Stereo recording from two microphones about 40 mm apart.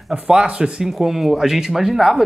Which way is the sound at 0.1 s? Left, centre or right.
Right.